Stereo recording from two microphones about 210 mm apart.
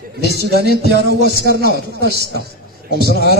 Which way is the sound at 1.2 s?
50° left (ahead or behind).